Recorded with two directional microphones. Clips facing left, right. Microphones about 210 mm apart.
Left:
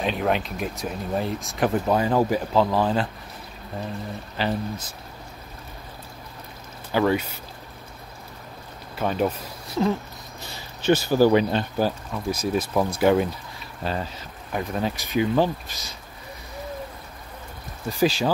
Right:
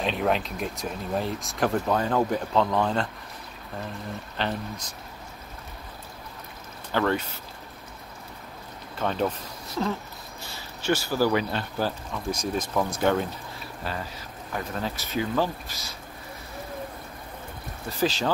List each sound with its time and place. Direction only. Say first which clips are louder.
0.0 s speech: left 1 dB; centre (ahead or behind)
4.4 s speech: left 4 dB; 5° left (ahead or behind)
6.9 s speech: left 4 dB; 10° left (ahead or behind)
8.9 s speech: left 3 dB; 10° left (ahead or behind)
12.3 s speech: left 4 dB; 10° left (ahead or behind)
14.5 s speech: left 5 dB; 15° left (ahead or behind)
17.8 s speech: left 4 dB; 10° left (ahead or behind)